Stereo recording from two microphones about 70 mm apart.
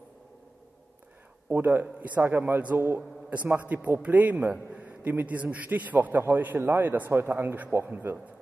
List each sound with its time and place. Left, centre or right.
1.5 s a man's voice: right